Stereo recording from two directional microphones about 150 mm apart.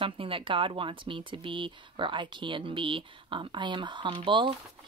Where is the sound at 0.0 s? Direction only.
35° right (ahead or behind).